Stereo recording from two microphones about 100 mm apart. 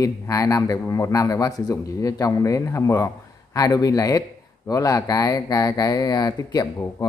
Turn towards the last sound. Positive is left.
turn(degrees=40)  # may be behind; listen again after turning